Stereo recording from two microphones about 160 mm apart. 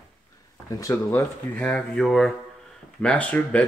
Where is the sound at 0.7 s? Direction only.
20° left (ahead or behind).